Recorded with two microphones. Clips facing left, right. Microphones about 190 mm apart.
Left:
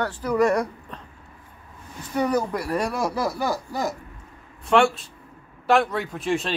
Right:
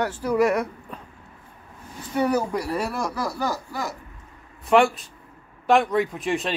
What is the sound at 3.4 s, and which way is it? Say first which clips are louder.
Speech: left 1 dB; 15° left (ahead or behind).